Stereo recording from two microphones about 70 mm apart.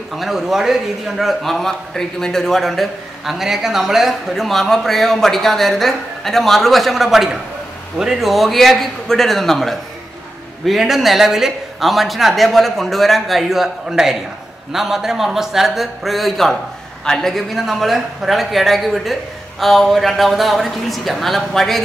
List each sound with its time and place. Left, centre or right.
0.1 s a man's voice: centre